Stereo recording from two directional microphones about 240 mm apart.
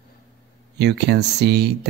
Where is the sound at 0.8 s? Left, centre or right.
Right.